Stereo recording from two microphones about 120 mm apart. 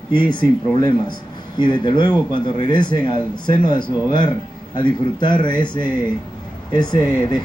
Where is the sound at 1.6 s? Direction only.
40° left (ahead or behind).